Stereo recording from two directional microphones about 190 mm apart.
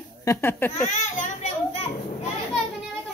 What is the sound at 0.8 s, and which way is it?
Children playing, 40° left (ahead or behind).